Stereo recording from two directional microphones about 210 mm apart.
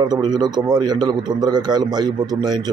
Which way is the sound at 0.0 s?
20° right (ahead or behind).